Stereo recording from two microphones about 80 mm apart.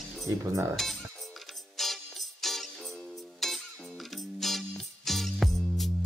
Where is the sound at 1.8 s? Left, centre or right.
Centre.